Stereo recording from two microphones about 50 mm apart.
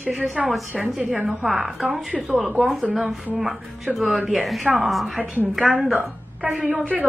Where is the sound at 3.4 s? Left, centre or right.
Centre.